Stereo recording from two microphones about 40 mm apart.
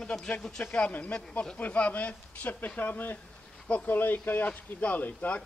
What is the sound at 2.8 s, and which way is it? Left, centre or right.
Speech, left.